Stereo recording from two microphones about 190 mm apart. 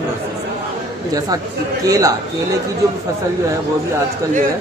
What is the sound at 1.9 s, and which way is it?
Speech, 20° right (ahead or behind).